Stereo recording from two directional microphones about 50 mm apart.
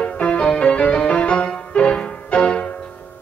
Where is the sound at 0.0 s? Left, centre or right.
Left.